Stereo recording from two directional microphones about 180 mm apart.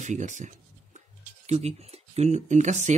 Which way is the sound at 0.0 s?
40° right (ahead or behind).